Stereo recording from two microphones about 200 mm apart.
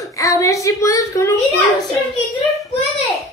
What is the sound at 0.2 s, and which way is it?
A woman's voice, 15° left (ahead or behind).